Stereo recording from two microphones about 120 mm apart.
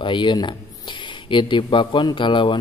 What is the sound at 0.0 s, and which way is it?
A man's voice, 40° left (ahead or behind).